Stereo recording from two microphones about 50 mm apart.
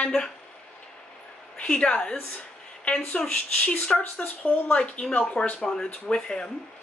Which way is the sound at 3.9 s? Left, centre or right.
Left.